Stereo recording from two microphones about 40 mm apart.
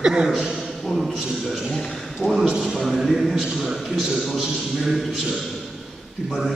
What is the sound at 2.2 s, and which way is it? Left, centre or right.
Speech, left.